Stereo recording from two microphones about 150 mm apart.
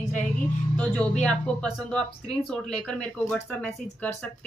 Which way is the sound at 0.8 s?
5° left (ahead or behind).